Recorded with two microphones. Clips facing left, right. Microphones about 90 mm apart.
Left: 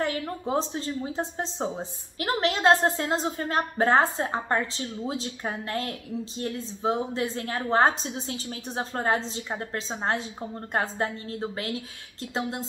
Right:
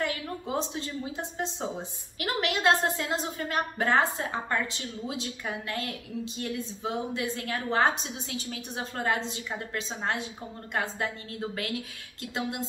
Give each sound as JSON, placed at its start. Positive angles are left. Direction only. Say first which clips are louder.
{"t": 0.0, "sound": "a woman's voice", "louder": "left 3 dB", "side_deg": 35}